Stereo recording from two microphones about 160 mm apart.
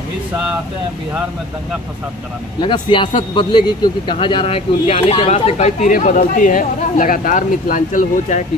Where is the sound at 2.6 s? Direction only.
30° left (ahead or behind).